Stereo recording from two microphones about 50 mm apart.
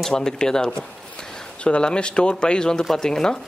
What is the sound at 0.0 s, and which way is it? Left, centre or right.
Speech, centre.